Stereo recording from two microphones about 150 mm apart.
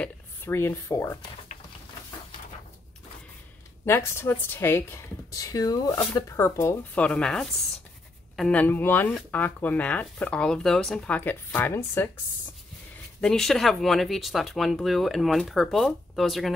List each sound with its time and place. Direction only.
0.0 s speech: 15° left (ahead or behind)
3.8 s speech: 15° left (ahead or behind)
7.1 s speech: 5° left (ahead or behind)
13.2 s speech: 5° left (ahead or behind)